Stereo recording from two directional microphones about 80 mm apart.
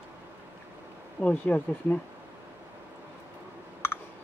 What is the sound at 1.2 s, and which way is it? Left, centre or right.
Speech, left.